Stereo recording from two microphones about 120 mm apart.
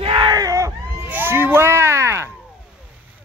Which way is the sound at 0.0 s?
40° right (ahead or behind).